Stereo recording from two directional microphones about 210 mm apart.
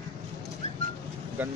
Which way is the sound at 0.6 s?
30° left (ahead or behind).